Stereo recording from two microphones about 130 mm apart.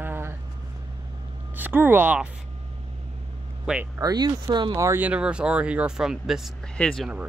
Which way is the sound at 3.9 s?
30° right (ahead or behind).